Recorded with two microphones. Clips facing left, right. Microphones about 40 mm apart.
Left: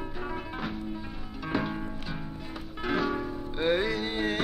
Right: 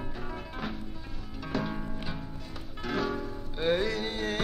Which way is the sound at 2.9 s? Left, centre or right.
Centre.